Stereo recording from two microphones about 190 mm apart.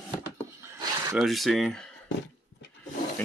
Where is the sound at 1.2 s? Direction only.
Centre (ahead or behind).